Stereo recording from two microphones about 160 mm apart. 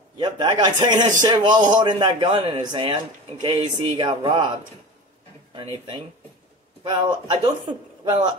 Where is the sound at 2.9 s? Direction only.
40° right (ahead or behind).